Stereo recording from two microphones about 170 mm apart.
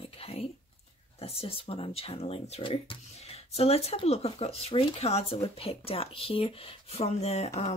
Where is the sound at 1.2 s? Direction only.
35° left (ahead or behind).